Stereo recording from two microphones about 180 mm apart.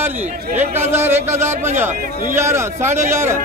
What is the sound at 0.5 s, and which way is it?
Speech, 10° right (ahead or behind).